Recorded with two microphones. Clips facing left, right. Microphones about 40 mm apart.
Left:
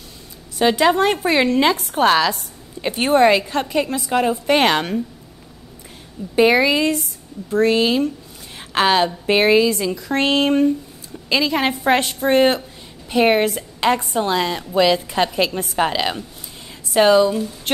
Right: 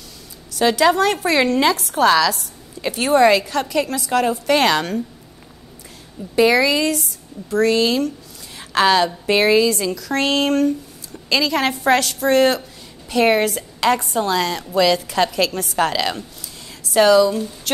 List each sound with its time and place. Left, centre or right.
0.6 s speech: centre
6.3 s a woman's voice: left